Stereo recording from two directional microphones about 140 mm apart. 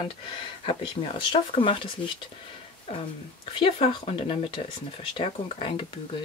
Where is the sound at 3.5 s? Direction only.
40° left (ahead or behind).